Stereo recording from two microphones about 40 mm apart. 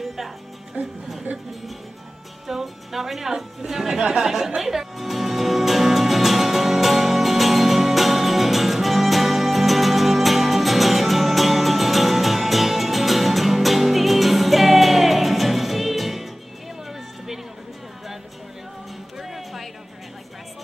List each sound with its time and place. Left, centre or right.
2.4 s a woman's voice: centre
4.6 s music: centre
19.1 s music: centre